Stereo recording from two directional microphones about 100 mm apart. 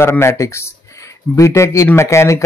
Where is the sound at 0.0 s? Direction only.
25° left (ahead or behind).